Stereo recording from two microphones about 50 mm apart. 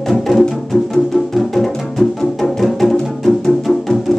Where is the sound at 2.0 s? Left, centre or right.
Centre.